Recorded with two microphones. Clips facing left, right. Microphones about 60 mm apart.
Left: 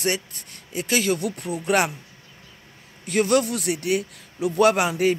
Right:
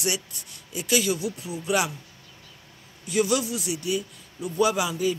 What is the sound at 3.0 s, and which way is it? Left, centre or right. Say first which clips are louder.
A man's voice: left 4 dB; left.